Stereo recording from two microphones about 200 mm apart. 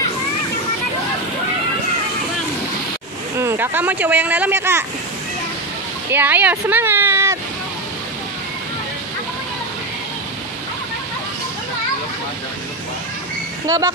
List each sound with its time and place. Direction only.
3.3 s speech: 10° right (ahead or behind)
6.0 s speech: 10° right (ahead or behind)
13.7 s speech: 15° right (ahead or behind)